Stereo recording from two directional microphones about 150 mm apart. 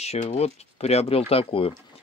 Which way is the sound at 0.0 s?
45° left (ahead or behind).